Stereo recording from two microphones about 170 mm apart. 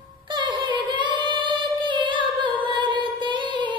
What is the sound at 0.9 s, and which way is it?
Singing, 30° right (ahead or behind).